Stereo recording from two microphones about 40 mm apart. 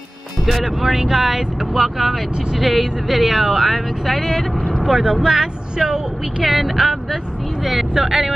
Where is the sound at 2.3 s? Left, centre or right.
Centre.